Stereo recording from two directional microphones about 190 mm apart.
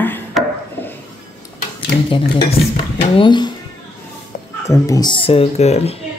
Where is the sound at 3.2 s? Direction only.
25° left (ahead or behind).